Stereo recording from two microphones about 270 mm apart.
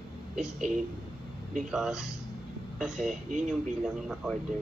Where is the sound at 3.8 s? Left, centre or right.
Centre.